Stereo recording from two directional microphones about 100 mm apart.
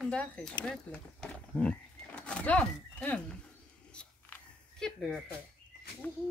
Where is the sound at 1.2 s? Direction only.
10° left (ahead or behind).